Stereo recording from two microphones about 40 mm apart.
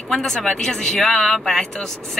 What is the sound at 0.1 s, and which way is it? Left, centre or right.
A man's voice, centre.